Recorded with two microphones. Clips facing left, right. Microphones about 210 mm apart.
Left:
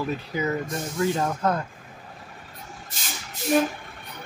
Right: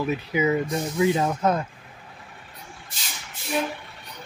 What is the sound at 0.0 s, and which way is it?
Speech, 10° right (ahead or behind).